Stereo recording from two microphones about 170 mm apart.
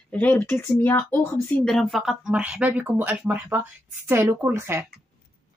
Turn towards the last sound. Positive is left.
turn(degrees=-15)  # may be behind; listen again after turning